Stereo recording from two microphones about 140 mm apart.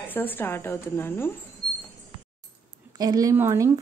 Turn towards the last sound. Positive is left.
turn(degrees=-20)  # may be behind; listen again after turning